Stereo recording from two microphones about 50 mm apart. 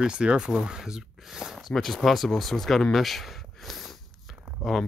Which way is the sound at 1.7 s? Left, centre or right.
Centre.